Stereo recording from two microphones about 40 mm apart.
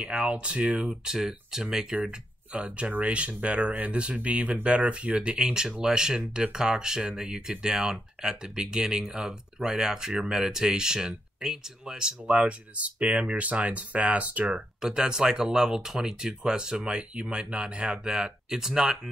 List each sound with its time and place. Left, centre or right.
0.0 s speech: right
1.0 s speech: centre
2.0 s speech: right
12.4 s speech: right
14.8 s speech: centre